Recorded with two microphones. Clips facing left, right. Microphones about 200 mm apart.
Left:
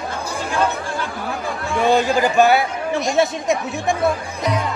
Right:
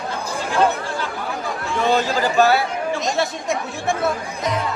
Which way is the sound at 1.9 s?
15° left (ahead or behind).